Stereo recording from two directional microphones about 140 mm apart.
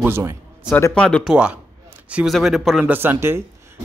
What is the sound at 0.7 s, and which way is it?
Speech, 15° left (ahead or behind).